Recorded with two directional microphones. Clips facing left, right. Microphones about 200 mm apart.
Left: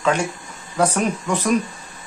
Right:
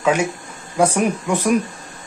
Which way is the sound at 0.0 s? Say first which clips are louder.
Right 2 dB; 10° right (ahead or behind).